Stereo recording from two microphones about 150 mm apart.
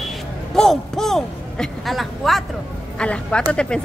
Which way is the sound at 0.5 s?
5° left (ahead or behind).